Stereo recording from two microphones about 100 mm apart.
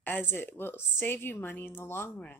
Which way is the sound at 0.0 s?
20° left (ahead or behind).